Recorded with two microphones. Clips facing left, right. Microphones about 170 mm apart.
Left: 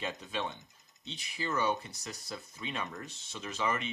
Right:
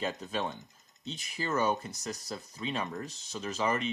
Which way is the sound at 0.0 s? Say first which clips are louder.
Right 3 dB; 40° right (ahead or behind).